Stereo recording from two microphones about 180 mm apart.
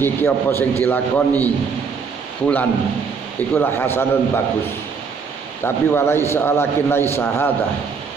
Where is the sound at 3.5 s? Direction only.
10° left (ahead or behind).